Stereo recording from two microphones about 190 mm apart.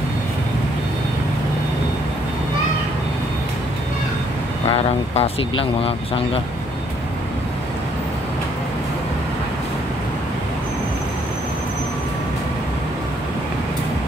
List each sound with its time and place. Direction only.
4.6 s speech: 30° left (ahead or behind)